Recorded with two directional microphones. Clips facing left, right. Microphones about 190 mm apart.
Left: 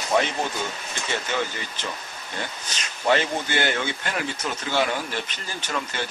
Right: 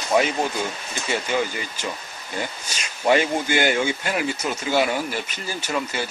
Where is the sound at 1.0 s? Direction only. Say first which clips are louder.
Right 4 dB; 10° right (ahead or behind).